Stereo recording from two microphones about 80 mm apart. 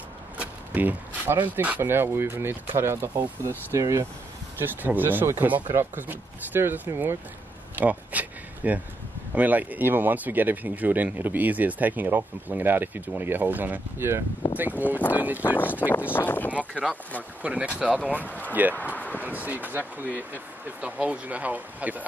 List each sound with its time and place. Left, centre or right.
0.4 s a sound: right
1.8 s speech: right
4.6 s speech: right
7.7 s a sound: centre
9.3 s speech: right
15.4 s speech: left
17.4 s speech: centre
18.9 s a sound: left
19.2 s speech: right